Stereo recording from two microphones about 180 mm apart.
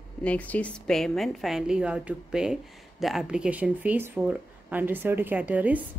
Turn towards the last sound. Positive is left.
turn(degrees=-10)  # may be behind; listen again after turning